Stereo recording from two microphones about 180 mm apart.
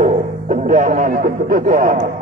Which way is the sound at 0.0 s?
40° right (ahead or behind).